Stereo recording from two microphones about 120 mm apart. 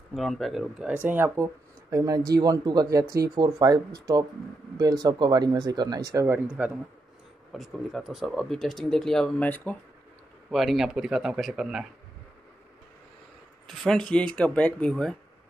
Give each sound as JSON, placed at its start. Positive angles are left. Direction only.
{"t": 0.1, "sound": "speech", "side_deg": 0}
{"t": 6.4, "sound": "a man's voice", "side_deg": -10}
{"t": 7.5, "sound": "speech", "side_deg": 0}
{"t": 10.5, "sound": "speech", "side_deg": 0}
{"t": 13.7, "sound": "speech", "side_deg": 5}